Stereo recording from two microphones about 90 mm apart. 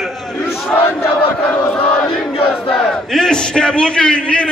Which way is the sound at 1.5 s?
15° left (ahead or behind).